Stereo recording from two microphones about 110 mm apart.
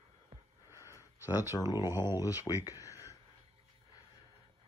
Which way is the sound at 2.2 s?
30° left (ahead or behind).